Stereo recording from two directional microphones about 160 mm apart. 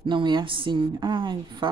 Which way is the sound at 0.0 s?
30° right (ahead or behind).